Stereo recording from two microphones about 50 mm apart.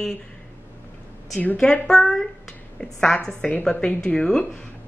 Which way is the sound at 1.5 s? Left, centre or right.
Centre.